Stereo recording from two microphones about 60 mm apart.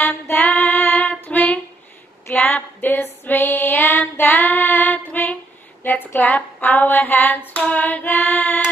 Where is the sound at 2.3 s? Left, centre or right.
Left.